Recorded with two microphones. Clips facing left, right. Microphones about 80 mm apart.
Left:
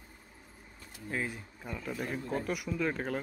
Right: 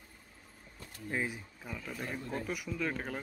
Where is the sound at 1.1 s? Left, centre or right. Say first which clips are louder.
Even; centre.